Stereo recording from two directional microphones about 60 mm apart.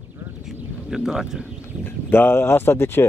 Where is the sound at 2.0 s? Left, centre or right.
Left.